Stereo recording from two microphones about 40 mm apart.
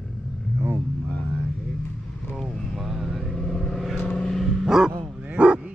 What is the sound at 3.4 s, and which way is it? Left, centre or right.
Vehicle, centre.